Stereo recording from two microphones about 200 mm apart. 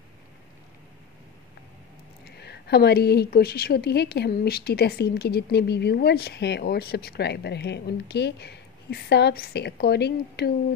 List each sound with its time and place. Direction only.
2.2 s a woman's voice: 55° left (ahead or behind)